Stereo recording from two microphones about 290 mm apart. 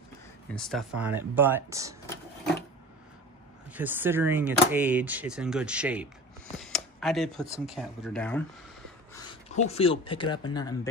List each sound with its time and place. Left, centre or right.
0.5 s speech: centre
3.7 s speech: centre
9.1 s a sound: centre
9.7 s speech: centre